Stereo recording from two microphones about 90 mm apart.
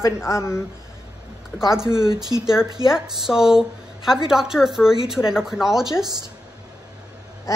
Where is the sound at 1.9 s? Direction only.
45° right (ahead or behind).